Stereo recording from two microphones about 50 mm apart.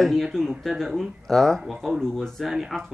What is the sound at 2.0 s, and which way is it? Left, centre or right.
Speech, centre.